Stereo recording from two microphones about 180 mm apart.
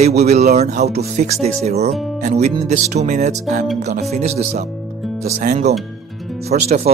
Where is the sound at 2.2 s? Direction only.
40° right (ahead or behind).